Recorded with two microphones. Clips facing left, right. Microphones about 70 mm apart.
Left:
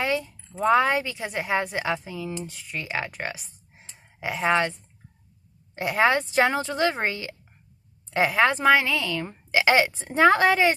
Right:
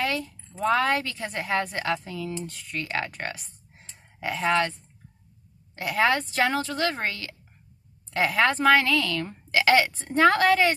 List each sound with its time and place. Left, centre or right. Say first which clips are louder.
0.0 s a sound: left 2 dB; centre
0.6 s a woman's voice: left 3 dB; left
5.8 s a woman's voice: left 2 dB; left